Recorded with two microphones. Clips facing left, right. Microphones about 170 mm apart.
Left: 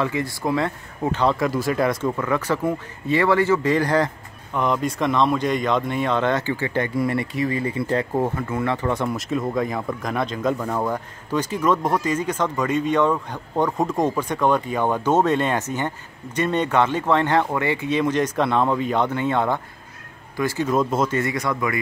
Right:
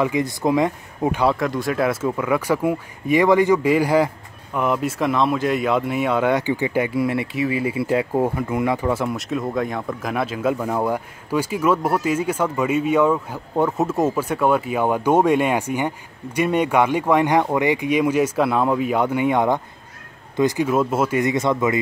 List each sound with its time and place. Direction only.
0.0 s speech: 15° right (ahead or behind)
1.3 s speech: centre (ahead or behind); by 21.7 s 25° right (ahead or behind)